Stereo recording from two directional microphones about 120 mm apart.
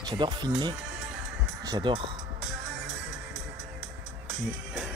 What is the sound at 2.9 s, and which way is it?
Music, centre (ahead or behind).